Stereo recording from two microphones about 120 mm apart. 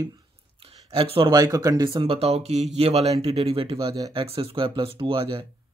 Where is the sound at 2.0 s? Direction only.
60° right (ahead or behind).